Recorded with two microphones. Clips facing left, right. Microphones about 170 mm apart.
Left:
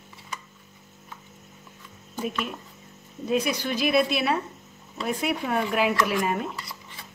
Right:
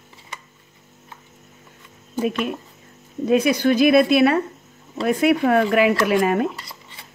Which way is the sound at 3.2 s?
75° right (ahead or behind).